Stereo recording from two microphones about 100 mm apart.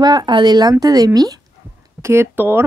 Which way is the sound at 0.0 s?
45° right (ahead or behind).